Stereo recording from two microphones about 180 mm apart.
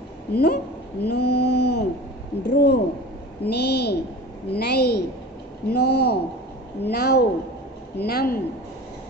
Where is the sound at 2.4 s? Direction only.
70° left (ahead or behind).